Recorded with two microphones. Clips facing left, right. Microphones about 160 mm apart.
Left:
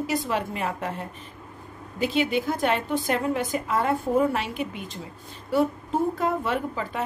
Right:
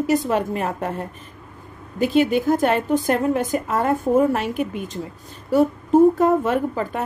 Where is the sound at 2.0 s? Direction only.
45° right (ahead or behind).